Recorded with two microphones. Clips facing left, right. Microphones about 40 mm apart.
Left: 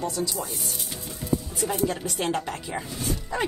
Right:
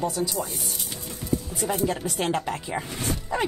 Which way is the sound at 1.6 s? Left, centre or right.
Centre.